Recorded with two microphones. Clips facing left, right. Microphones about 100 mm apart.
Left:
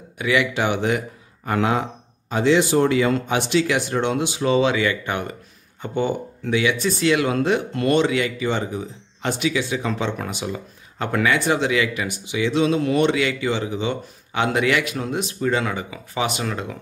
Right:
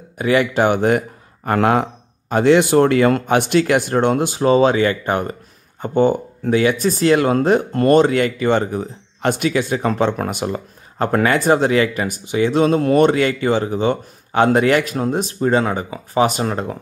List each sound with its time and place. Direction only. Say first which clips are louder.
0.2 s speech: right 5 dB; 45° right (ahead or behind)